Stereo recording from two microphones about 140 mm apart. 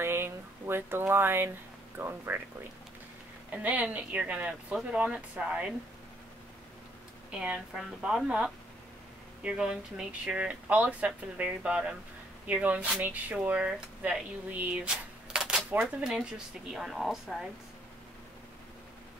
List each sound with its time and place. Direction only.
0.0 s speech: 15° right (ahead or behind)
3.5 s speech: 10° right (ahead or behind)
7.2 s speech: 10° right (ahead or behind)